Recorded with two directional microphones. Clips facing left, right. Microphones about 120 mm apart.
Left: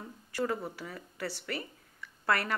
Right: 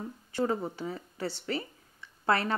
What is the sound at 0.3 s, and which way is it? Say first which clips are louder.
Speech: right 3 dB; 25° right (ahead or behind).